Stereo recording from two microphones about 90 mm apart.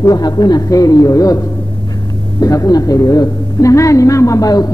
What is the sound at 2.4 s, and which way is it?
A man's voice, 40° left (ahead or behind).